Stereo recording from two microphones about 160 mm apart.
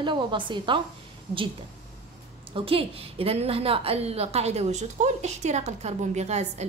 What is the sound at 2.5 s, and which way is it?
A woman's voice, 35° right (ahead or behind).